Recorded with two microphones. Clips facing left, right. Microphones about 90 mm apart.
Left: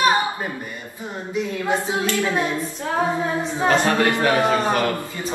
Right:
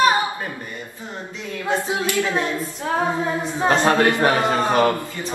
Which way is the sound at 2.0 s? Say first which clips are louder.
Left 1 dB; 15° right (ahead or behind).